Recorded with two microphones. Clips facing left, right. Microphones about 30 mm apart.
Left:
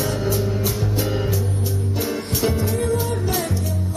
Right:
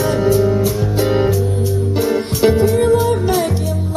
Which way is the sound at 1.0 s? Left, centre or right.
Right.